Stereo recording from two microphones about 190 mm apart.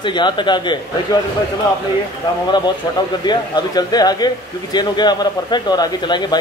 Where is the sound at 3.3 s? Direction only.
20° left (ahead or behind).